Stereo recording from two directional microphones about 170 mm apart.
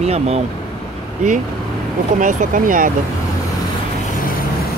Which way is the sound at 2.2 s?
50° right (ahead or behind).